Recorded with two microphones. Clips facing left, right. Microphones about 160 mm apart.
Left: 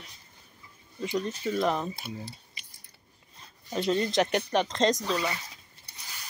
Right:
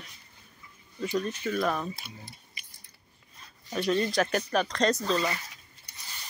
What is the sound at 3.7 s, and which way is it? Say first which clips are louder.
Speech: even; 20° left (ahead or behind).